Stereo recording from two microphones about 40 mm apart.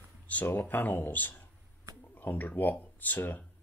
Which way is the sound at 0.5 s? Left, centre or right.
Left.